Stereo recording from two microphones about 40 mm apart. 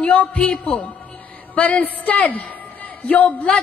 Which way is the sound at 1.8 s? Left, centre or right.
Left.